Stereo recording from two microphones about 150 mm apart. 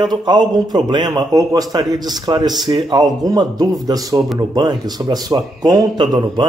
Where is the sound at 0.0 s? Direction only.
30° right (ahead or behind).